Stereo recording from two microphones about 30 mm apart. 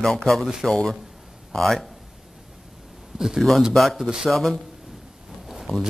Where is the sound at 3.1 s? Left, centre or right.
Centre.